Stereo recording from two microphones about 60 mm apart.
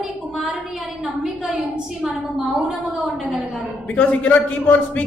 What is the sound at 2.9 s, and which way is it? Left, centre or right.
Speech, centre.